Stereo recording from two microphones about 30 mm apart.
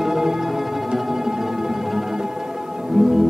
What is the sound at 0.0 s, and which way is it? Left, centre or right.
Music, centre.